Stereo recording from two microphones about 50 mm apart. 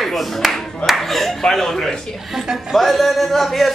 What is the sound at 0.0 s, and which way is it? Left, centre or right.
A man's voice, centre.